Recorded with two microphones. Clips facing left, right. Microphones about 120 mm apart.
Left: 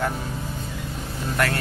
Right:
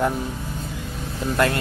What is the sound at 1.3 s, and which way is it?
Speech, 20° right (ahead or behind).